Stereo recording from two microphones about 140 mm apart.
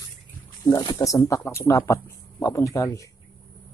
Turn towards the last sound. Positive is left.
turn(degrees=20)  # may be behind; listen again after turning